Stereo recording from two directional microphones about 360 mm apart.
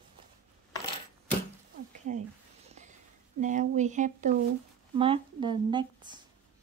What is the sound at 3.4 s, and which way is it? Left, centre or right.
Speech, right.